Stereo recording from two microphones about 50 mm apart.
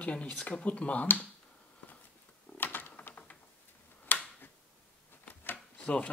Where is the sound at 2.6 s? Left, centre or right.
Left.